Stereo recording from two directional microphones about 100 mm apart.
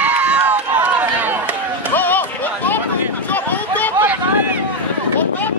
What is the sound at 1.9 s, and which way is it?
Music, 20° left (ahead or behind).